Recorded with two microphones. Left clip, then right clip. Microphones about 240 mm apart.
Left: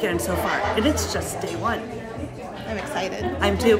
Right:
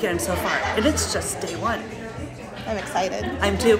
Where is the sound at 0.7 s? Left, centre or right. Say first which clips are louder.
Right 1 dB; centre.